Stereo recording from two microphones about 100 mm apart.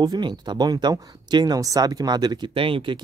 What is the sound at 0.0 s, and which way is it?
Speech, 45° right (ahead or behind).